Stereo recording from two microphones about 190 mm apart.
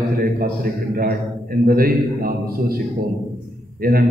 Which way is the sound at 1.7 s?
50° right (ahead or behind).